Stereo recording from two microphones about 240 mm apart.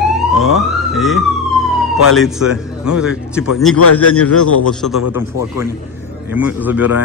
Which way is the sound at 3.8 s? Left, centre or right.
Left.